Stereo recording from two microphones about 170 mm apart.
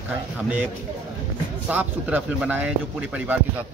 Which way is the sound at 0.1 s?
10° right (ahead or behind).